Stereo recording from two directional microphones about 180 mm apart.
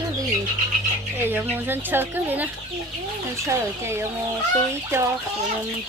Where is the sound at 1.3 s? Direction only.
10° right (ahead or behind).